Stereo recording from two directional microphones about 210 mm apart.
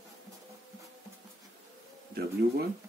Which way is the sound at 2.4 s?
50° right (ahead or behind).